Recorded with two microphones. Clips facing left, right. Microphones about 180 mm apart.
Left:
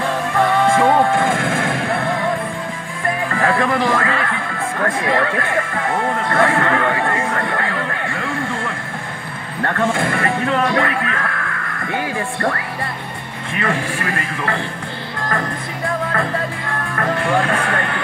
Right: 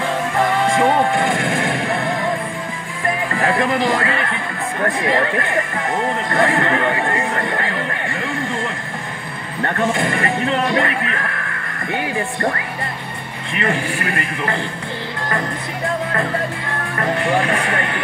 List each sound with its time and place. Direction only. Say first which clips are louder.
0.7 s music: even; 20° right (ahead or behind)
3.3 s music: left 1 dB; 20° right (ahead or behind)
5.0 s speech: right 1 dB; 20° right (ahead or behind)
6.1 s a sound: left 1 dB; 20° right (ahead or behind)
9.8 s speech: even; 20° right (ahead or behind)
13.6 s speech: even; 20° right (ahead or behind)
17.0 s speech: even; 20° right (ahead or behind)